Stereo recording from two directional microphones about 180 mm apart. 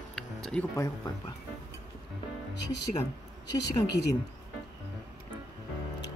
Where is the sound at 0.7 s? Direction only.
20° left (ahead or behind).